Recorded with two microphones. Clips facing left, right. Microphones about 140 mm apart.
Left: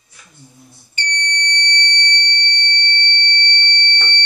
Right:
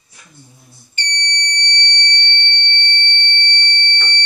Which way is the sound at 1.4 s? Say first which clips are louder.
Left 2 dB; 55° left (ahead or behind).